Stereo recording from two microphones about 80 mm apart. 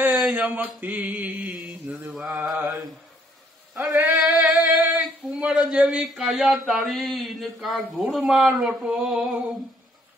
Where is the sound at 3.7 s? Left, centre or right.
Right.